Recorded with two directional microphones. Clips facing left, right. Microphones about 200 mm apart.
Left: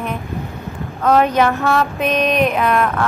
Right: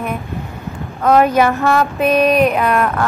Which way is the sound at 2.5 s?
5° right (ahead or behind).